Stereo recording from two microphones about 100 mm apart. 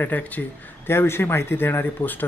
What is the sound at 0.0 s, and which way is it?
Speech, 15° left (ahead or behind).